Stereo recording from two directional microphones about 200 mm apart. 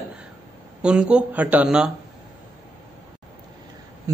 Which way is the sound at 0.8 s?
5° right (ahead or behind).